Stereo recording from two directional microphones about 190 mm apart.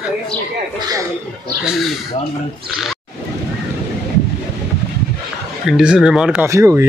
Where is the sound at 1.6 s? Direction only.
Centre (ahead or behind).